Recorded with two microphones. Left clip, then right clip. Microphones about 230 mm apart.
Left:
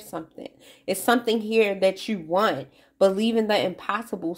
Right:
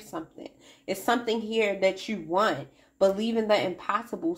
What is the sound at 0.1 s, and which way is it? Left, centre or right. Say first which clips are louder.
Speech: left 3 dB; left.